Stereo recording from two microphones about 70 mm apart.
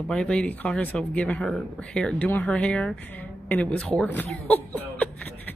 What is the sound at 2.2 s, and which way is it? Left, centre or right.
Speech, left.